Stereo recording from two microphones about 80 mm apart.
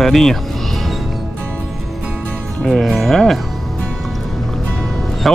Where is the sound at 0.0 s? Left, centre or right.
Centre.